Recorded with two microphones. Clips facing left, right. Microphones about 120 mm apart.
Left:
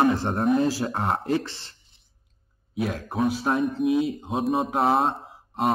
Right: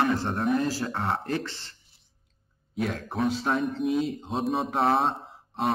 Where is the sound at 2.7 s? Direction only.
5° left (ahead or behind).